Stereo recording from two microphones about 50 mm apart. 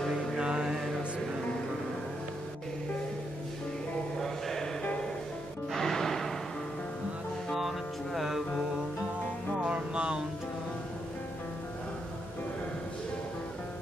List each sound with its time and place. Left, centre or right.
0.1 s mantra: centre
4.2 s mantra: centre
5.7 s music: centre
7.5 s music: centre
9.6 s music: centre